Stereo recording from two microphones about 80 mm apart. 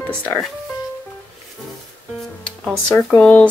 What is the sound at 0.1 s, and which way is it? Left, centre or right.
Speech, left.